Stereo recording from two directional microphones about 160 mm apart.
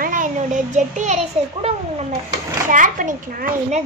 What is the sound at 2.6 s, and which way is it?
A child's voice, 55° right (ahead or behind).